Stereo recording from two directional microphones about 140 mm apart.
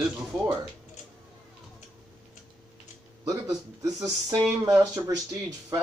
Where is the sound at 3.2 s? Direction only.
20° right (ahead or behind).